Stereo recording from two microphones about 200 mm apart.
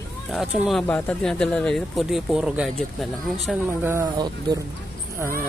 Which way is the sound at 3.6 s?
10° right (ahead or behind).